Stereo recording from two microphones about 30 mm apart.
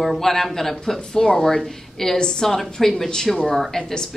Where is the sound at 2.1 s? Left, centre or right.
Left.